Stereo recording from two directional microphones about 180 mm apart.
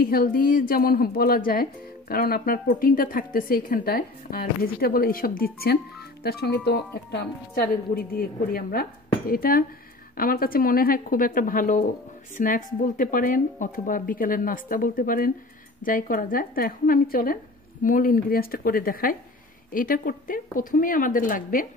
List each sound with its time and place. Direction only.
0.0 s a woman's voice: 55° left (ahead or behind)
7.6 s a woman's voice: 55° left (ahead or behind)